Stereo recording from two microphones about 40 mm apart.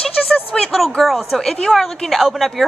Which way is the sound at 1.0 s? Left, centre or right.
Centre.